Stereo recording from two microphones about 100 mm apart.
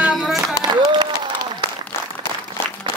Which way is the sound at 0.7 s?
50° right (ahead or behind).